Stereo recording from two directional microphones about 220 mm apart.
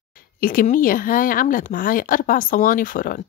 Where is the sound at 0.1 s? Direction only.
40° left (ahead or behind).